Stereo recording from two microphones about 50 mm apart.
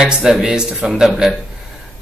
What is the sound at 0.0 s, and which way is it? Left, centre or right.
Speech, centre.